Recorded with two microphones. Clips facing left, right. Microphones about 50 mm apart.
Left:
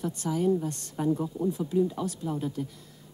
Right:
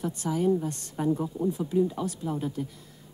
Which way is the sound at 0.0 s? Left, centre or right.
Centre.